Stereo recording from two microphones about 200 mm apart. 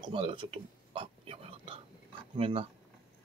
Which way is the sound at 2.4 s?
25° right (ahead or behind).